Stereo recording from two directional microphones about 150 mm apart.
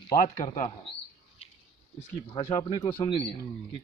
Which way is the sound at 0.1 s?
65° left (ahead or behind).